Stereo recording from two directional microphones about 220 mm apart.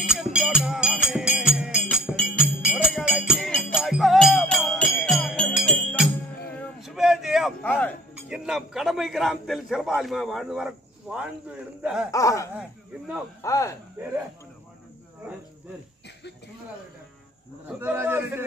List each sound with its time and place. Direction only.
0.1 s music: centre (ahead or behind)
6.5 s a sound: centre (ahead or behind)
11.8 s speech: 5° right (ahead or behind)
12.1 s speech: 15° left (ahead or behind)
17.6 s a man's voice: 10° right (ahead or behind)